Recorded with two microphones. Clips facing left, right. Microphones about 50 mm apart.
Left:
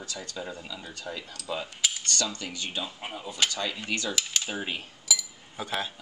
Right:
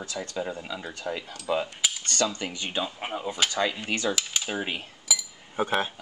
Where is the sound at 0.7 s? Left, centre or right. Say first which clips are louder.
Right 5 dB; right.